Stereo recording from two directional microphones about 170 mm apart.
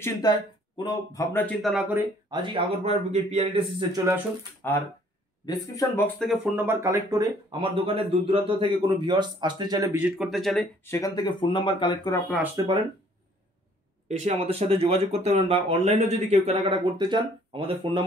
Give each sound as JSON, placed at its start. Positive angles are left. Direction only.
{"t": 0.0, "sound": "speech", "side_deg": 25}
{"t": 1.6, "sound": "speech", "side_deg": 0}
{"t": 2.3, "sound": "speech", "side_deg": -30}
{"t": 3.9, "sound": "speech", "side_deg": -20}
{"t": 5.4, "sound": "speech", "side_deg": 20}
{"t": 6.1, "sound": "speech", "side_deg": 0}
{"t": 9.9, "sound": "speech", "side_deg": -5}
{"t": 10.9, "sound": "speech", "side_deg": 20}
{"t": 12.5, "sound": "speech", "side_deg": -25}
{"t": 14.0, "sound": "speech", "side_deg": -40}